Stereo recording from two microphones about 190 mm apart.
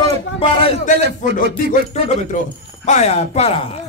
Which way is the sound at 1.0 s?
60° right (ahead or behind).